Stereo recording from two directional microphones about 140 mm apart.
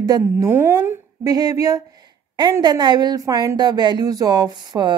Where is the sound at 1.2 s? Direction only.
25° right (ahead or behind).